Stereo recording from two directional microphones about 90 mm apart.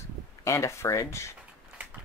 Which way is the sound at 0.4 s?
35° left (ahead or behind).